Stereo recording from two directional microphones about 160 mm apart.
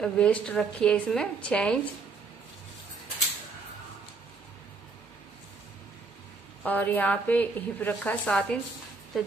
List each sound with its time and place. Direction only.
0.0 s speech: 5° left (ahead or behind)
6.6 s speech: 10° left (ahead or behind)